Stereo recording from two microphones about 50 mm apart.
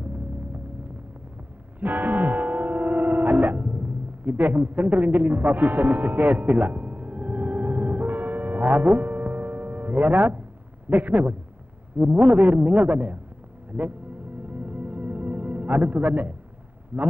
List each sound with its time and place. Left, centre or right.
1.8 s music: right
10.9 s speech: right
14.5 s music: right
16.9 s speech: right